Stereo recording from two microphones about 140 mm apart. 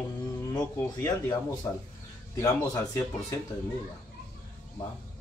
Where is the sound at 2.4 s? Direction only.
25° left (ahead or behind).